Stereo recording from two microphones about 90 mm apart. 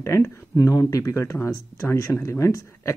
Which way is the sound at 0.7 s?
40° left (ahead or behind).